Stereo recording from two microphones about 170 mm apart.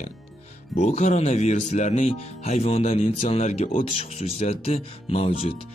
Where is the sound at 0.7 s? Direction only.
40° left (ahead or behind).